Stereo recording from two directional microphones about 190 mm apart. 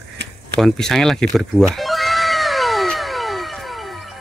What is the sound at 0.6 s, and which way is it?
Speech, centre (ahead or behind).